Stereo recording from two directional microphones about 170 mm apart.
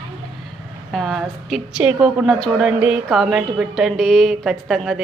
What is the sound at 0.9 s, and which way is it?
A woman's voice, centre (ahead or behind).